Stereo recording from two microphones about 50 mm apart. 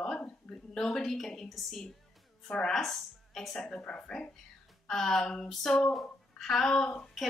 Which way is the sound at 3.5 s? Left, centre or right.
Centre.